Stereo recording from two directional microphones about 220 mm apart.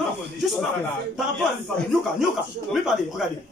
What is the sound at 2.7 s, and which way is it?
Speech, centre (ahead or behind).